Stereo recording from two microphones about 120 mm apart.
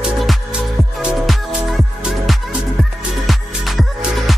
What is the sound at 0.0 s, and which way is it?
Music, 5° right (ahead or behind).